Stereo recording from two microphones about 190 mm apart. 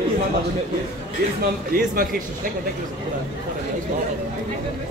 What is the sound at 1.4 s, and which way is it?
Speech, 50° right (ahead or behind).